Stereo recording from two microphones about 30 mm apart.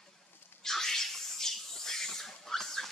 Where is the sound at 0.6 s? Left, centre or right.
Centre.